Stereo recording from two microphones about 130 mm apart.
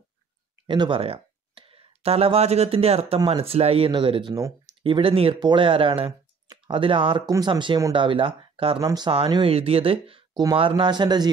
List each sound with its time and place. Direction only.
0.7 s speech: 40° right (ahead or behind)
8.8 s speech: 35° right (ahead or behind)
10.3 s speech: 30° right (ahead or behind)